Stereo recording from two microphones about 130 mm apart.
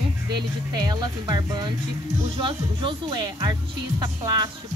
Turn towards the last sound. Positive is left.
turn(degrees=-30)  # may be behind; listen again after turning